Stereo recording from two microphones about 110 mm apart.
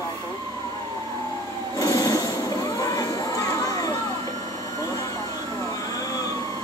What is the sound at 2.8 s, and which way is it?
Crowd, 30° left (ahead or behind).